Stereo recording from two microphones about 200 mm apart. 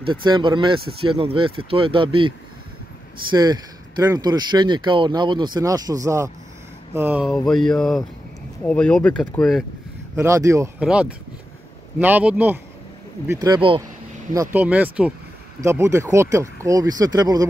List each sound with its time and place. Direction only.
0.0 s speech: 25° right (ahead or behind)
7.2 s speech: centre (ahead or behind)
10.1 s speech: 15° right (ahead or behind)
12.0 s speech: 10° right (ahead or behind)
13.3 s speech: 20° right (ahead or behind)
14.3 s speech: 15° right (ahead or behind)